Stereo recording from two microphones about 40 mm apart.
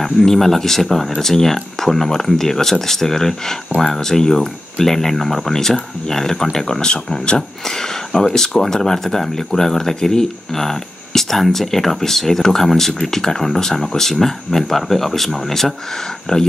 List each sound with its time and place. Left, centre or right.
0.0 s speech: centre
6.8 s speech: left